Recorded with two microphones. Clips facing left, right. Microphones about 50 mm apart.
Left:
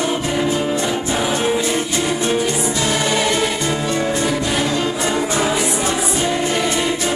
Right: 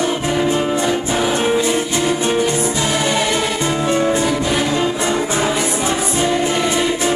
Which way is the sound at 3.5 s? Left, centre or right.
Centre.